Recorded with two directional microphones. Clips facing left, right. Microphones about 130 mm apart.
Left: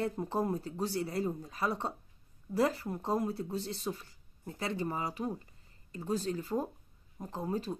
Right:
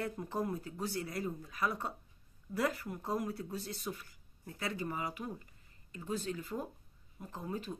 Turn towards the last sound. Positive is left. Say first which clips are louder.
# left 5 dB
turn(degrees=35)  # may be behind; listen again after turning